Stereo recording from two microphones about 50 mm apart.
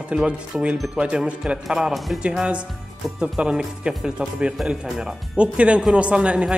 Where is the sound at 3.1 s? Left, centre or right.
Centre.